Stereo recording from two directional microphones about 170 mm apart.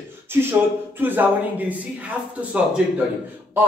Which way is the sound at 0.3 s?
15° right (ahead or behind).